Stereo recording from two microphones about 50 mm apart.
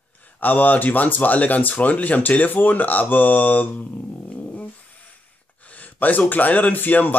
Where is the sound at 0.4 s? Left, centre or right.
Left.